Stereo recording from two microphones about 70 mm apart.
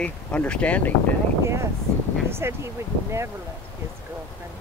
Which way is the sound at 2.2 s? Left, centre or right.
Right.